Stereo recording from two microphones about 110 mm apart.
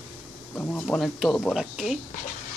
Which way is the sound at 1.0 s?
Centre (ahead or behind).